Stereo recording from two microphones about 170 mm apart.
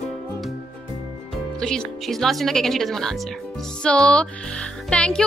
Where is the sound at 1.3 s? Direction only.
5° left (ahead or behind).